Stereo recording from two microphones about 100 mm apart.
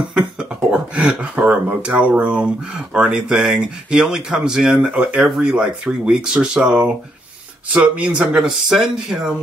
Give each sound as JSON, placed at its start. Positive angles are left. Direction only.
{"t": 0.1, "sound": "speech", "side_deg": -10}